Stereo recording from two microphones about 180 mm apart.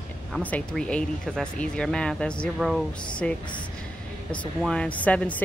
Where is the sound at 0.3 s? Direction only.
10° left (ahead or behind).